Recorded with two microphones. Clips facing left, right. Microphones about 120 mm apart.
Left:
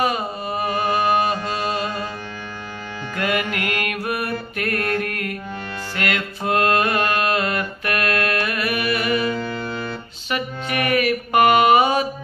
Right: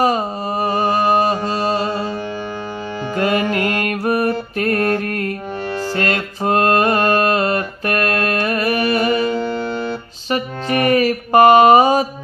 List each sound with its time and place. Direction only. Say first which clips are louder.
0.0 s mantra: right 5 dB; 35° right (ahead or behind)
3.2 s music: right 6 dB; 35° right (ahead or behind)